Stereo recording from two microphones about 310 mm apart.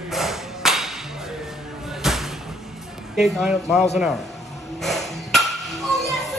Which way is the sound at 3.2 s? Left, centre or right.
Centre.